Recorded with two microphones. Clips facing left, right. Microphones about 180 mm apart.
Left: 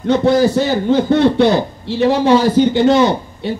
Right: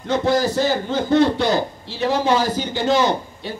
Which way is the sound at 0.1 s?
60° left (ahead or behind).